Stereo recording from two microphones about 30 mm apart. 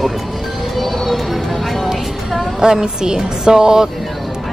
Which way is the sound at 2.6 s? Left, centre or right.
Right.